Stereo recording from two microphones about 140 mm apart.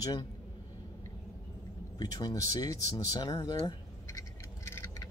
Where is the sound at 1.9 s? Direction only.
25° left (ahead or behind).